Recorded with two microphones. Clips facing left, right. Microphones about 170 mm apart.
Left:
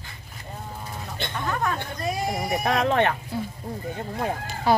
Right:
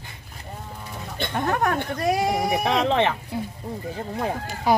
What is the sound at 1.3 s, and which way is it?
Speech, 60° right (ahead or behind).